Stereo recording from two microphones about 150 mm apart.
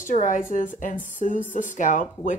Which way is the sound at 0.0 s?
60° left (ahead or behind).